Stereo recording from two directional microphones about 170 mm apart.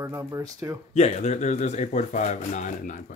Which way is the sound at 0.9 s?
40° left (ahead or behind).